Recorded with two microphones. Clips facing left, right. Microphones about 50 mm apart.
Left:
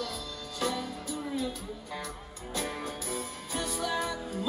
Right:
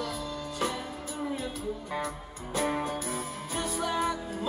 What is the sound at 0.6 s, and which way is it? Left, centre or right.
Music, right.